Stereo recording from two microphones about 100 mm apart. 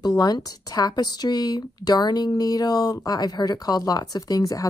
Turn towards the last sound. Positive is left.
turn(degrees=35)  # may be behind; listen again after turning